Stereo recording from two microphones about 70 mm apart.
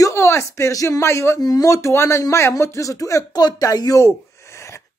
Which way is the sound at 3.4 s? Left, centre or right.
Left.